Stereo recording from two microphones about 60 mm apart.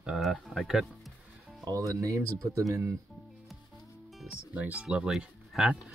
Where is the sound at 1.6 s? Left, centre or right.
Right.